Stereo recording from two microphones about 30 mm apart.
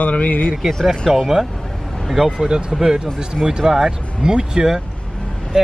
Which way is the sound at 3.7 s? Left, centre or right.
Centre.